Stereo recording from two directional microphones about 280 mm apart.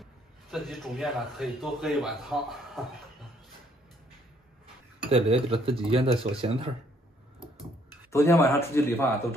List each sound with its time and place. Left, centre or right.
0.0 s a man's voice: centre
5.1 s speech: centre
8.1 s speech: centre